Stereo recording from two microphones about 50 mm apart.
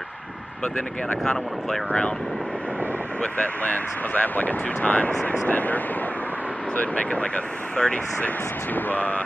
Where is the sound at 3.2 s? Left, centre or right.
Left.